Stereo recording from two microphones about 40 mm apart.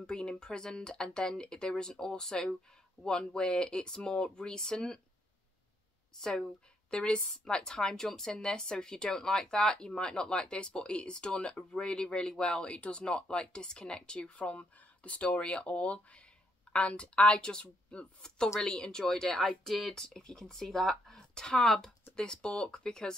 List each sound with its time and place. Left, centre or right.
0.0 s speech: left
6.9 s speech: left; by 19.9 s centre
20.2 s speech: centre
22.1 s speech: left